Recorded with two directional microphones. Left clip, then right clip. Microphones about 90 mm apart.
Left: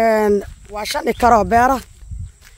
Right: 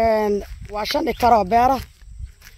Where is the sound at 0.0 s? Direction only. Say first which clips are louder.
Left 3 dB; 35° left (ahead or behind).